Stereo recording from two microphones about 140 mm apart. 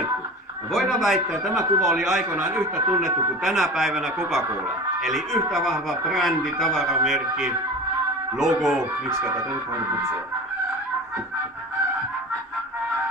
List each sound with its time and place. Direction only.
0.7 s speech: centre (ahead or behind)
9.1 s speech: 20° right (ahead or behind)